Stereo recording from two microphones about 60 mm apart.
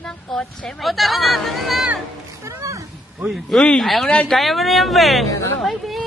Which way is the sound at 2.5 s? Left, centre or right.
Right.